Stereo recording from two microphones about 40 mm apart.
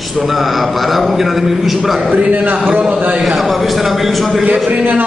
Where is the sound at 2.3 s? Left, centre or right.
Right.